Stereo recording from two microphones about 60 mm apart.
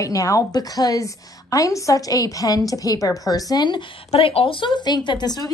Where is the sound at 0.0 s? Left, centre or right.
Left.